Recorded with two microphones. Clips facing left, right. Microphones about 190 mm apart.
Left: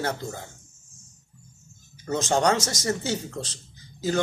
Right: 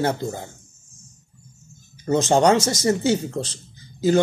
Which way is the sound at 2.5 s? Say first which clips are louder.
Right 6 dB; 30° right (ahead or behind).